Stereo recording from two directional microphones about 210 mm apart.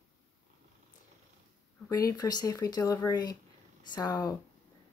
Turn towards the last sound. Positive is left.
turn(degrees=15)  # may be behind; listen again after turning